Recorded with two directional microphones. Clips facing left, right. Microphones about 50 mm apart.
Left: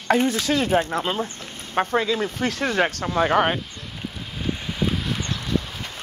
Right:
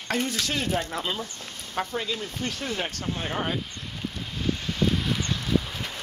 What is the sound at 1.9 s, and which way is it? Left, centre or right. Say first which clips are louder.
Speech: left 9 dB; left.